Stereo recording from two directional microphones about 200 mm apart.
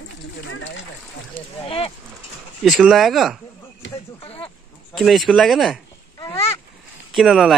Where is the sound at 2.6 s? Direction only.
Centre (ahead or behind).